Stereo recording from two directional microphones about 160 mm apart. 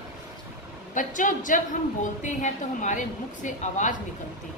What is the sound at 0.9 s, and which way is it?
A woman's voice, 55° left (ahead or behind).